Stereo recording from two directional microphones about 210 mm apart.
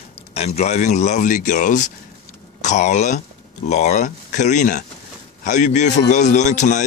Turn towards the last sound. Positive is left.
turn(degrees=35)  # may be behind; listen again after turning